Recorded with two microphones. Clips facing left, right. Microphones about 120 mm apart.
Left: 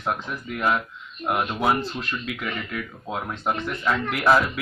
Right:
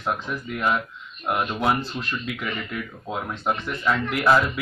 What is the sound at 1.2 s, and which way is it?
Speech, 5° left (ahead or behind).